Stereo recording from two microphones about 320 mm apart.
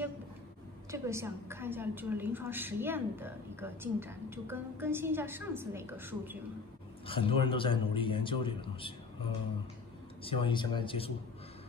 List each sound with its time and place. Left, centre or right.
0.9 s a woman's voice: centre
7.1 s a man's voice: centre
10.2 s a man's voice: centre